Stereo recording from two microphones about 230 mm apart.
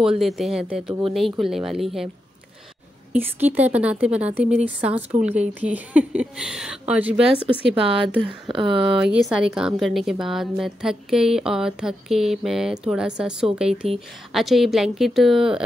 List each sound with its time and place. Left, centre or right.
0.2 s speech: centre
3.1 s speech: centre
8.5 s speech: right
8.8 s speech: centre